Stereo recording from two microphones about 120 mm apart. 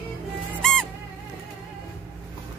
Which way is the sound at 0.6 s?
5° left (ahead or behind).